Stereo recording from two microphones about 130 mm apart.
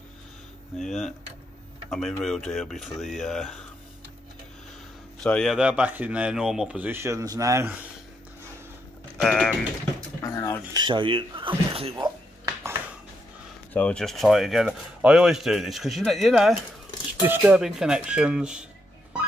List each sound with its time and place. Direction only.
0.7 s speech: centre (ahead or behind)
5.2 s speech: 5° left (ahead or behind)
6.9 s speech: 20° right (ahead or behind)
9.2 s speech: 5° left (ahead or behind)
10.2 s a sound: 25° left (ahead or behind)
10.7 s speech: 35° right (ahead or behind)
13.7 s speech: 10° left (ahead or behind)
17.2 s speech: 15° right (ahead or behind)